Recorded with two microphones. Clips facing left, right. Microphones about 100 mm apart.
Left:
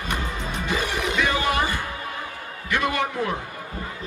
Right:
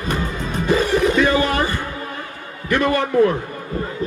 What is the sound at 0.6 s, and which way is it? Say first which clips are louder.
Music: right 10 dB; 40° right (ahead or behind).